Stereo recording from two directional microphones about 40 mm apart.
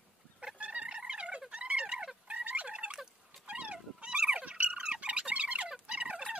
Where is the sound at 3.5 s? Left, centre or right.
Right.